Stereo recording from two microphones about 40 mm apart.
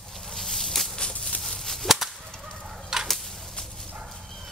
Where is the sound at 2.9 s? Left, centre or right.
Centre.